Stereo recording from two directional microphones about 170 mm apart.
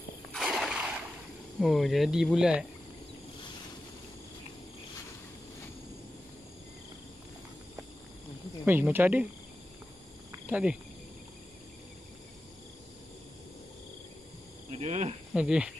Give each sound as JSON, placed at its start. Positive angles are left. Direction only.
{"t": 0.3, "sound": "a sound", "side_deg": 0}
{"t": 1.6, "sound": "speech", "side_deg": 0}
{"t": 8.6, "sound": "speech", "side_deg": -10}
{"t": 10.4, "sound": "speech", "side_deg": -5}
{"t": 14.8, "sound": "cricket", "side_deg": -40}
{"t": 15.3, "sound": "speech", "side_deg": -5}